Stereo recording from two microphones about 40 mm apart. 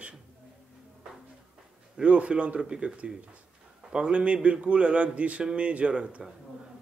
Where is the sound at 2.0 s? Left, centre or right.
Right.